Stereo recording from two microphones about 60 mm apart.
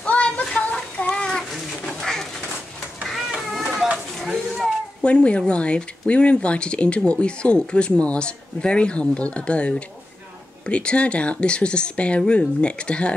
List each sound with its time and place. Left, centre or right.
0.0 s a sound: left
0.6 s child singing: left
1.5 s bird: centre
3.1 s cat: centre
4.3 s a sound: centre
5.0 s speech: centre